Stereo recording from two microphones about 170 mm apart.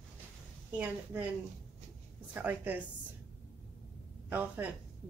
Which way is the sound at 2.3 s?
10° right (ahead or behind).